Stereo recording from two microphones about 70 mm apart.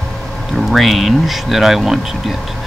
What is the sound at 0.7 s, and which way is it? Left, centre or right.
Speech, centre.